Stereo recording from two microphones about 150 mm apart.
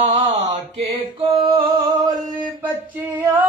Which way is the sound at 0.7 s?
40° right (ahead or behind).